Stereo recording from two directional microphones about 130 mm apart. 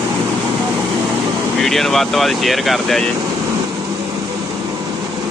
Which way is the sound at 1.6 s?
Centre (ahead or behind).